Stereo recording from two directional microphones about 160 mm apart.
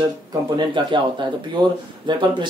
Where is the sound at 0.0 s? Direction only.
25° right (ahead or behind).